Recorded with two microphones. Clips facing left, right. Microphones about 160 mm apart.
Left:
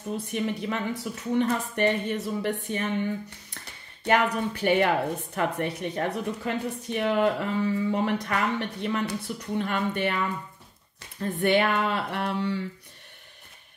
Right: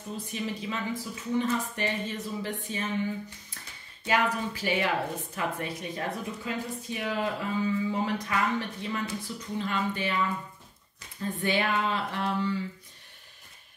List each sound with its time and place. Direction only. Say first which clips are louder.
0.3 s a woman's voice: left 4 dB; 60° left (ahead or behind)
4.0 s a woman's voice: left 4 dB; 60° left (ahead or behind)
11.1 s a woman's voice: left 6 dB; 65° left (ahead or behind)